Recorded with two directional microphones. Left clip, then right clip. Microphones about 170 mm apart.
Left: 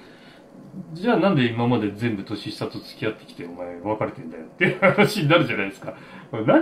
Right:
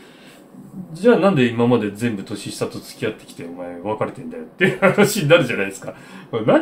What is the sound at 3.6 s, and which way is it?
Speech, 25° right (ahead or behind).